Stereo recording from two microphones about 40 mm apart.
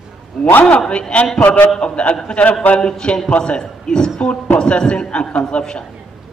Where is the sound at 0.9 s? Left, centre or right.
Left.